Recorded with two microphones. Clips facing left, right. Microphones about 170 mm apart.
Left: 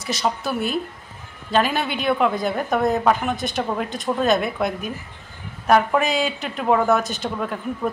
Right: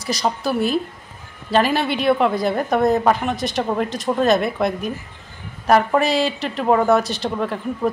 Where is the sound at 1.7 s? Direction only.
35° right (ahead or behind).